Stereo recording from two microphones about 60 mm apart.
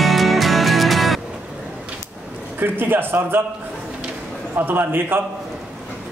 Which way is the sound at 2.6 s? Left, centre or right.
Right.